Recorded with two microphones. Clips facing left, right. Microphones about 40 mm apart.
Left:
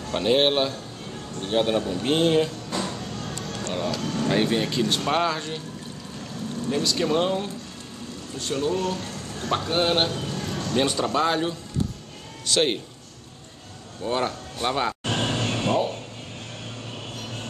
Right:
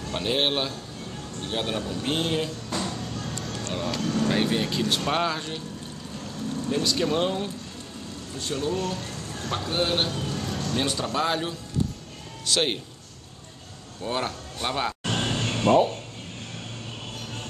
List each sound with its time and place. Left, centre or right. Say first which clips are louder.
0.1 s speech: left 5 dB; centre
6.7 s speech: left 2 dB; centre
9.7 s speech: left 2 dB; centre
10.1 s speech: left 1 dB; centre
14.0 s vehicle: left 3 dB; centre